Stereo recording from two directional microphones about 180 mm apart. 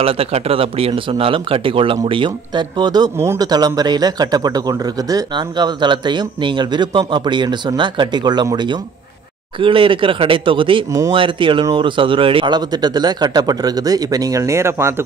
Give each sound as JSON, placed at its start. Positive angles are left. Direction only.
{"t": 0.0, "sound": "speech", "side_deg": -35}
{"t": 10.9, "sound": "speech", "side_deg": -15}
{"t": 11.1, "sound": "speech", "side_deg": -30}